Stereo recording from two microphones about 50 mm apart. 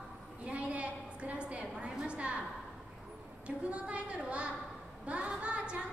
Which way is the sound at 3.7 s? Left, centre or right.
Right.